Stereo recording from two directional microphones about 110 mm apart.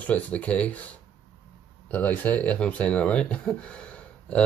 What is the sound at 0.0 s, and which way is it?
Speech, 10° left (ahead or behind).